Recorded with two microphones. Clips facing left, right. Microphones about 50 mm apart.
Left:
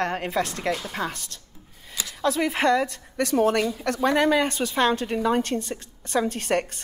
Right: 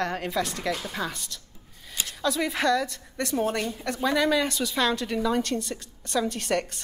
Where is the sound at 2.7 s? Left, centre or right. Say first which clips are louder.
Left 3 dB; left.